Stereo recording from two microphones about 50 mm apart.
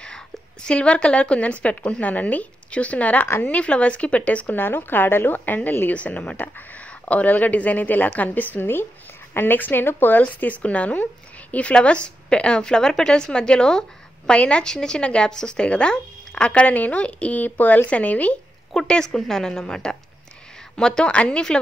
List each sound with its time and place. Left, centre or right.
0.7 s a woman's voice: centre
4.6 s a woman's voice: left
5.9 s a woman's voice: left
18.9 s a woman's voice: centre